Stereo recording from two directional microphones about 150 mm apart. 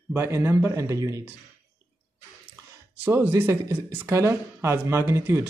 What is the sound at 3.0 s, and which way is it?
Speech, 15° right (ahead or behind).